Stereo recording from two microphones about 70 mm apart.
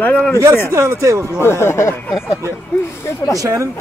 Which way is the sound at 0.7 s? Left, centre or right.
Right.